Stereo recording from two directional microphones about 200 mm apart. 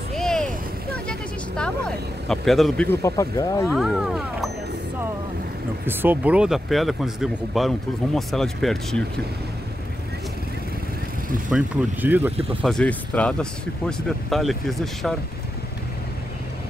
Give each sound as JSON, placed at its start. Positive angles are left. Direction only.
{"t": 0.1, "sound": "vehicle", "side_deg": 0}
{"t": 2.2, "sound": "speech", "side_deg": 0}
{"t": 2.9, "sound": "speech", "side_deg": 15}
{"t": 3.7, "sound": "speech", "side_deg": 0}
{"t": 5.9, "sound": "speech", "side_deg": -10}
{"t": 11.5, "sound": "speech", "side_deg": -10}
{"t": 12.6, "sound": "speech", "side_deg": 5}